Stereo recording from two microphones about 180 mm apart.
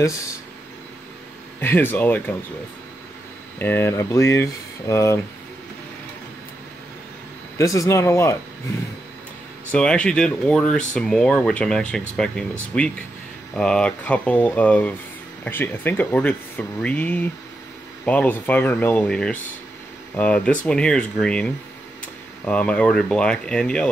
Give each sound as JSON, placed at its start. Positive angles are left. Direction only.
{"t": 1.6, "sound": "speech", "side_deg": 10}
{"t": 3.5, "sound": "speech", "side_deg": 10}
{"t": 7.5, "sound": "speech", "side_deg": 20}
{"t": 9.7, "sound": "speech", "side_deg": 5}